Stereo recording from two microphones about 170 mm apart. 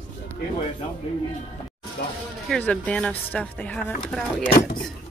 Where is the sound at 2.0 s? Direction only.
70° left (ahead or behind).